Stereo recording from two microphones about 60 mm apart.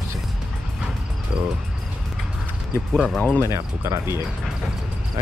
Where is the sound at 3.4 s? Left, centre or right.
Right.